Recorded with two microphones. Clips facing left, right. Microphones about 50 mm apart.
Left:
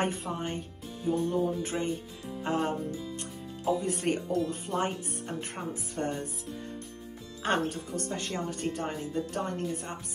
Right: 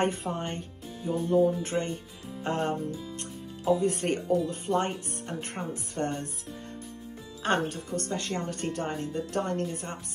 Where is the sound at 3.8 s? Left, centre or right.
Right.